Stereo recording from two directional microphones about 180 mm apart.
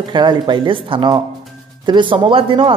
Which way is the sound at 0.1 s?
25° right (ahead or behind).